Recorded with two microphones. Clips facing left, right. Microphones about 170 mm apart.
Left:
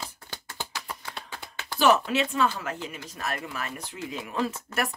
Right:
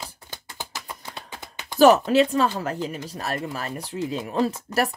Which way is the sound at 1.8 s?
40° right (ahead or behind).